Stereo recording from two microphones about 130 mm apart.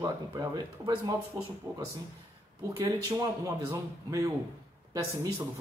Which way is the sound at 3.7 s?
25° right (ahead or behind).